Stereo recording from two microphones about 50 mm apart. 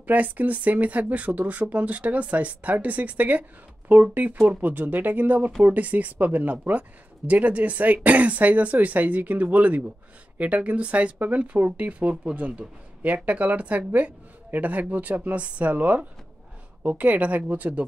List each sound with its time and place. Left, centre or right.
0.0 s speech: right